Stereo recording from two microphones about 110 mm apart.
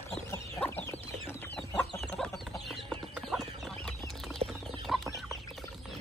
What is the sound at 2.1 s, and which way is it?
Chicken, 5° left (ahead or behind).